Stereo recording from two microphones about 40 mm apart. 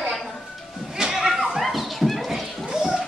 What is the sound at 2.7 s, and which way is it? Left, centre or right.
Music, centre.